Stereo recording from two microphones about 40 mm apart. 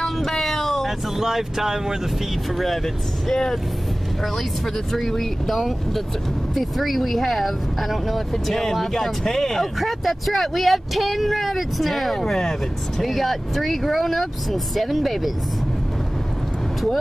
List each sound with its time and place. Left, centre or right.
0.0 s a sound: centre
0.8 s speech: centre
2.5 s speech: centre
3.3 s speech: centre
4.9 s speech: centre